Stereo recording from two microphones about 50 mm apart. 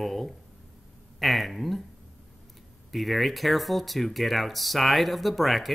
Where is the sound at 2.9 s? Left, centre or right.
Centre.